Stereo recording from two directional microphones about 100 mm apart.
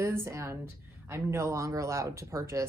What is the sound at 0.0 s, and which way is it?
A woman's voice, 30° right (ahead or behind).